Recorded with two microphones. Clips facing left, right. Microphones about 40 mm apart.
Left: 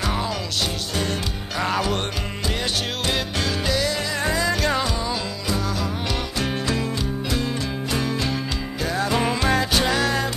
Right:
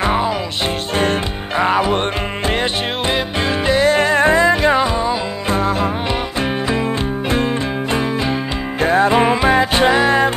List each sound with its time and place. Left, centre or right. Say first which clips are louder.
0.0 s music: right 8 dB; right
1.6 s music: right 8 dB; right
3.1 s music: right 6 dB; right
4.6 s music: right 8 dB; right
6.4 s music: right 5 dB; right
7.2 s music: right 9 dB; right